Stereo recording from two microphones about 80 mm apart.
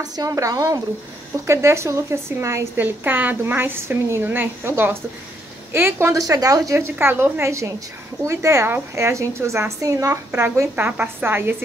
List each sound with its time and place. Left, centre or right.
0.0 s speech: right
0.3 s a woman's voice: right
2.8 s a woman's voice: right
6.2 s speech: right
6.8 s a woman's voice: right
10.4 s a woman's voice: right
10.9 s a woman's voice: centre
11.2 s a woman's voice: right